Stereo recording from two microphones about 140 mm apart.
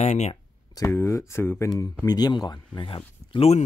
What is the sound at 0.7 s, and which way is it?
Speech, 20° left (ahead or behind).